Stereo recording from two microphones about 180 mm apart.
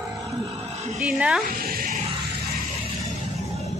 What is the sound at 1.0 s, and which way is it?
Speech, 5° right (ahead or behind).